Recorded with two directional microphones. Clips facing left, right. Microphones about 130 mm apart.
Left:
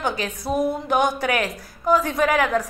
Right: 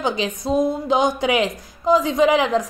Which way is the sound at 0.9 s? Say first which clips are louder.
Right 2 dB; 15° right (ahead or behind).